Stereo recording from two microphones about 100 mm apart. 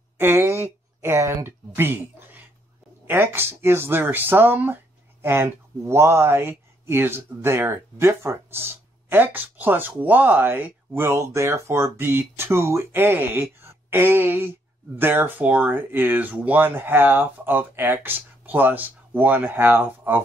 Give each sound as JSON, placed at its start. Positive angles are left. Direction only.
{"t": 0.2, "sound": "speech", "side_deg": -25}